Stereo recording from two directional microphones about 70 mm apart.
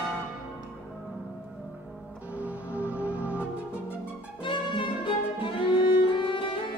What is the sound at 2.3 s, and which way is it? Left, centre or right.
Music, right.